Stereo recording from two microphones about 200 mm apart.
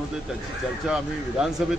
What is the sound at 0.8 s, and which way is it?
Speech, centre (ahead or behind).